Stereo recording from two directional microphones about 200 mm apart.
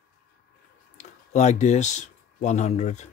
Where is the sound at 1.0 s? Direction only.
35° left (ahead or behind).